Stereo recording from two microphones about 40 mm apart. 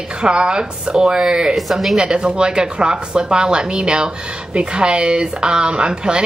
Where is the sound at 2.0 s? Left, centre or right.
Right.